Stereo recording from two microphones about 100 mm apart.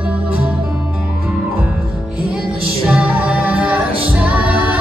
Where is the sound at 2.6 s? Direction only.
10° right (ahead or behind).